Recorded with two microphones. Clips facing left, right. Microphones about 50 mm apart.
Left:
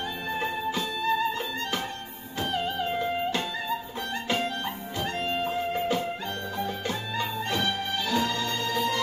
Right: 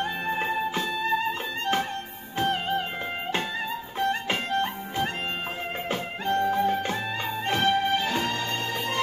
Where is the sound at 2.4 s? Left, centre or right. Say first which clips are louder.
Right 3 dB; right.